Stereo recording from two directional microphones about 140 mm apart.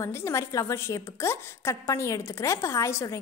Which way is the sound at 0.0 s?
20° left (ahead or behind).